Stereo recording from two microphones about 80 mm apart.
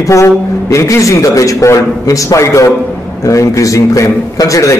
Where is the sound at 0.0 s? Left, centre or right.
Left.